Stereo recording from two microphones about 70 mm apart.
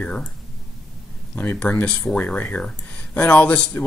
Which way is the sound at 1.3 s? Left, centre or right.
Left.